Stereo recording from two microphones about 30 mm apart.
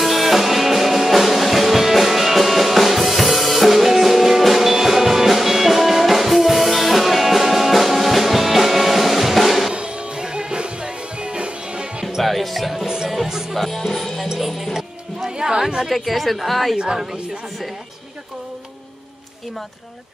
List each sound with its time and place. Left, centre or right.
0.0 s music: centre
10.1 s music: right
12.2 s music: centre
12.7 s music: centre
13.6 s music: centre
15.3 s chatter: right
15.9 s a woman's voice: centre
16.7 s a woman's voice: right